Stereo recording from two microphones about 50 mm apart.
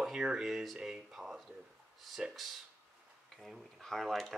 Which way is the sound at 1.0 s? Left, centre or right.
Centre.